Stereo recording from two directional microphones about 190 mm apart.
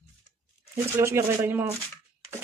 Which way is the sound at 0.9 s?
15° right (ahead or behind).